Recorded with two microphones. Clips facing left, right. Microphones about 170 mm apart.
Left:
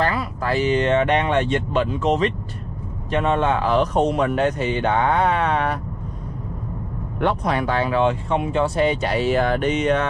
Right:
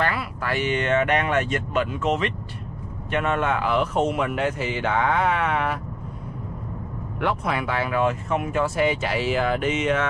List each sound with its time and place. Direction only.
0.0 s speech: 35° left (ahead or behind)
7.2 s speech: 35° left (ahead or behind)